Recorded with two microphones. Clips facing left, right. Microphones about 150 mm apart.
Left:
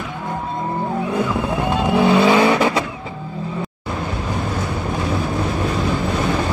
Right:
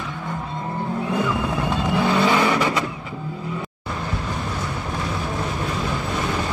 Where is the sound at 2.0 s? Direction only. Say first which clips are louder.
Left 6 dB; 15° left (ahead or behind).